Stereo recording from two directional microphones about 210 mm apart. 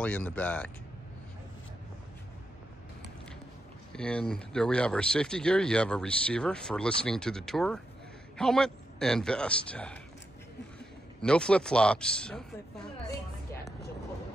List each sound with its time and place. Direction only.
0.0 s speech: 5° left (ahead or behind)
3.9 s speech: 5° left (ahead or behind)
11.1 s speech: 5° left (ahead or behind)